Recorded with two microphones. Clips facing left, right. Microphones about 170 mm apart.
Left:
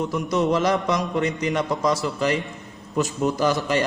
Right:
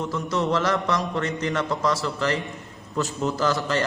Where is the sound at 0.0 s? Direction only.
15° left (ahead or behind).